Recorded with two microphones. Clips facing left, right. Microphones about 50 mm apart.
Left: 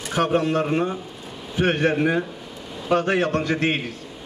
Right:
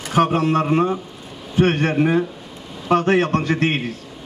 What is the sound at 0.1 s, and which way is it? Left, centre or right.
A man's voice, right.